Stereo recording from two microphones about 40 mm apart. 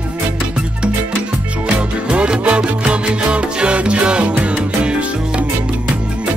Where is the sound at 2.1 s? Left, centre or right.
Right.